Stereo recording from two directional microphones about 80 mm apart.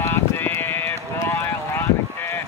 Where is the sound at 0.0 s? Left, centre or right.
Left.